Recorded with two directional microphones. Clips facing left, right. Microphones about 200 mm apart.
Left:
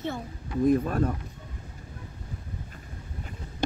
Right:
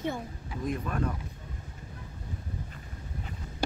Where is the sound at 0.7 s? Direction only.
40° left (ahead or behind).